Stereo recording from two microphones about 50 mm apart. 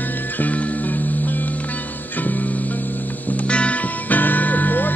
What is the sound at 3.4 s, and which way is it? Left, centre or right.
Music, left.